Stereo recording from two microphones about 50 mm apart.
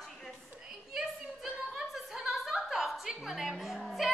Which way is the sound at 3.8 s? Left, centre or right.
Centre.